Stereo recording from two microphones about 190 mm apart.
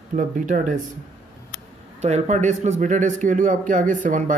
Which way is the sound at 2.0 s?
35° right (ahead or behind).